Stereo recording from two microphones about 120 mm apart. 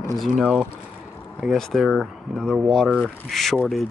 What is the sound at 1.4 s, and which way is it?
Speech, centre (ahead or behind).